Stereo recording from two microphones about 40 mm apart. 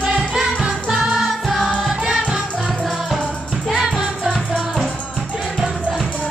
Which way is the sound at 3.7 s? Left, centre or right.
Centre.